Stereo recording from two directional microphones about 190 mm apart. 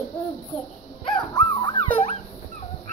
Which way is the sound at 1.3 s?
20° left (ahead or behind).